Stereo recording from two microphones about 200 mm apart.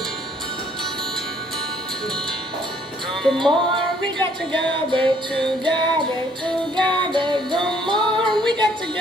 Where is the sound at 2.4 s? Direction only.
25° right (ahead or behind).